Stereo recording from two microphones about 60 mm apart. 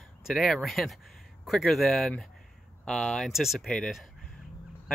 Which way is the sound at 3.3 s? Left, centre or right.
Centre.